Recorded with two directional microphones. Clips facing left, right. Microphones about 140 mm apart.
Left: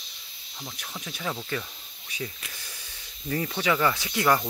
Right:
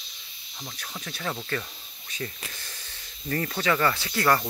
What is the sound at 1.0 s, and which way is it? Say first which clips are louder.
Speech: even; 10° left (ahead or behind).